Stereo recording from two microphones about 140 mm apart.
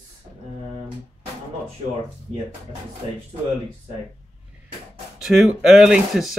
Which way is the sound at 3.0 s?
60° left (ahead or behind).